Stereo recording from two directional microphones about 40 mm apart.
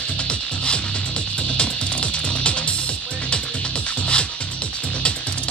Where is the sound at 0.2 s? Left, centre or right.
Left.